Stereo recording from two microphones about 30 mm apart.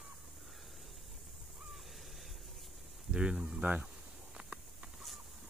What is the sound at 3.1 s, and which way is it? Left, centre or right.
Speech, right.